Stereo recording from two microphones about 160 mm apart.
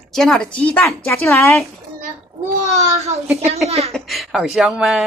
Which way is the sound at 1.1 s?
15° left (ahead or behind).